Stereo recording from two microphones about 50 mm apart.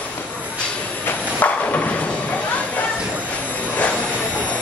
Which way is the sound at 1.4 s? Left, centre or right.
Left.